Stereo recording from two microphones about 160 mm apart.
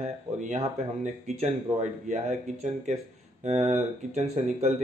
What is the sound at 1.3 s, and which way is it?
Speech, 45° right (ahead or behind).